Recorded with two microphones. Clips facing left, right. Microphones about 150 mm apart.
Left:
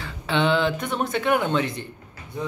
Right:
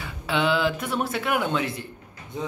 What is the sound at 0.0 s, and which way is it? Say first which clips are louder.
Speech: left 2 dB; 5° right (ahead or behind).